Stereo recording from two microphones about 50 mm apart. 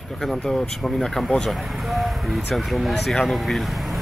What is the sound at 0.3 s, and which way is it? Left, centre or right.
Speech, centre.